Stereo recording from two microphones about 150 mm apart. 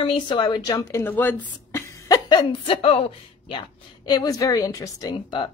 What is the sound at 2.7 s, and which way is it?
Speech, 40° left (ahead or behind).